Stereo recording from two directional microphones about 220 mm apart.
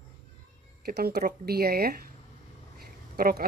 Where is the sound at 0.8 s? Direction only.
45° right (ahead or behind).